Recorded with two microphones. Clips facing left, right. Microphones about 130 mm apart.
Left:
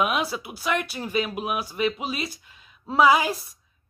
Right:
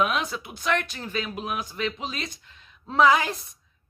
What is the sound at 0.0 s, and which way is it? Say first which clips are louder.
A woman's voice: left 1 dB; 10° left (ahead or behind).